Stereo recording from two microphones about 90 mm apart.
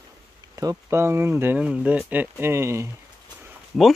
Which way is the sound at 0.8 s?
30° right (ahead or behind).